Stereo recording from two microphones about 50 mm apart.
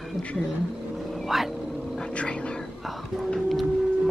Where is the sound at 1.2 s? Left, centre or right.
Centre.